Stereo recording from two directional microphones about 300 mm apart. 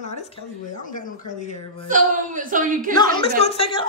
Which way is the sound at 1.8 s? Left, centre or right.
Right.